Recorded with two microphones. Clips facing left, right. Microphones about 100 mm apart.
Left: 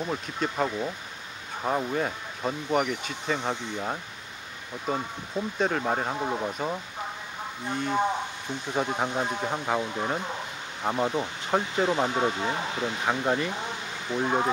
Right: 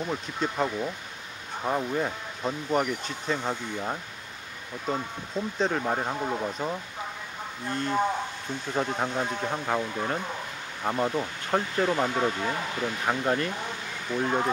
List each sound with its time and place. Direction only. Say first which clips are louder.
0.0 s speech: even; centre (ahead or behind)